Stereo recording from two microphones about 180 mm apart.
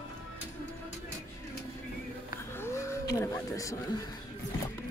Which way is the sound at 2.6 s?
15° left (ahead or behind).